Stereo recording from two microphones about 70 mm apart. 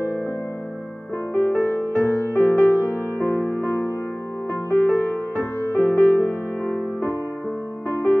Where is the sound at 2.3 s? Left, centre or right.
Left.